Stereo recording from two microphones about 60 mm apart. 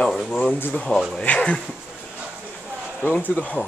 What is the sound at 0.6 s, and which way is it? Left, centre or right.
Speech, left.